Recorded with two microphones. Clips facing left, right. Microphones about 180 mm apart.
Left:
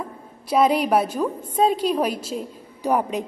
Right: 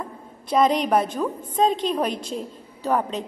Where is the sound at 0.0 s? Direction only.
10° left (ahead or behind).